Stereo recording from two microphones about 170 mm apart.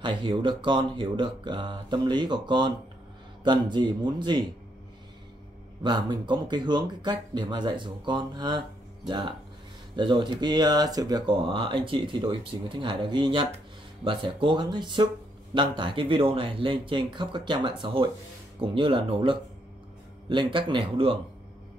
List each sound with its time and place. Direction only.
0.0 s speech: 25° right (ahead or behind)
5.8 s speech: 25° right (ahead or behind)